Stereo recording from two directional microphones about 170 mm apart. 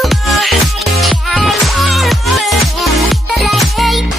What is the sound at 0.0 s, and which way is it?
Music, centre (ahead or behind).